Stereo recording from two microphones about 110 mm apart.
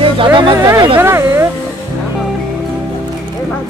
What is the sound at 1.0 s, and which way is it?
Speech, 25° right (ahead or behind).